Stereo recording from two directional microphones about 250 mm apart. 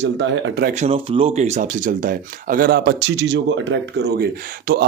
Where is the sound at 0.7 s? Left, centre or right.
Right.